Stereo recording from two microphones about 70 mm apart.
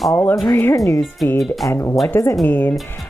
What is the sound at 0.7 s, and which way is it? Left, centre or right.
Speech, left.